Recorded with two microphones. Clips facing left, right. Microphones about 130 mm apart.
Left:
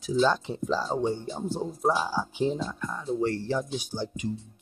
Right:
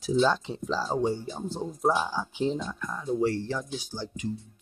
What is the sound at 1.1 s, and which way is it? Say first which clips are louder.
Speech: even; 20° left (ahead or behind).